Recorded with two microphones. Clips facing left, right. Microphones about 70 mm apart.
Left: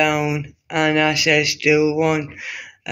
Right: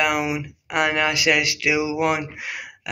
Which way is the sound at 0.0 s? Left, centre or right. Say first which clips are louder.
Left 3 dB; right.